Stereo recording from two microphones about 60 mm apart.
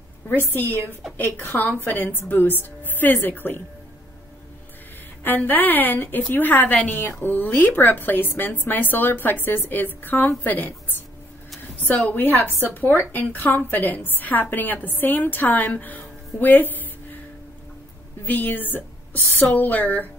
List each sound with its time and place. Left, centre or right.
0.3 s a woman's voice: left
5.2 s a woman's voice: left
18.2 s a woman's voice: left